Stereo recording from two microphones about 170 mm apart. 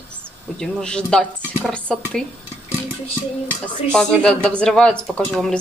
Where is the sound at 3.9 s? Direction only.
5° left (ahead or behind).